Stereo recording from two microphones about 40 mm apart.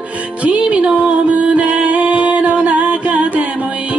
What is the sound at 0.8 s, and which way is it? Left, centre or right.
Music, right.